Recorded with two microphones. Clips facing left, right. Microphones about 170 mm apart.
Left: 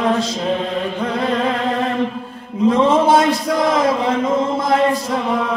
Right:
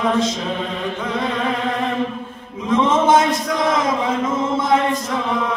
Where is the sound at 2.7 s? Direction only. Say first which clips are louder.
Left 2 dB; 35° left (ahead or behind).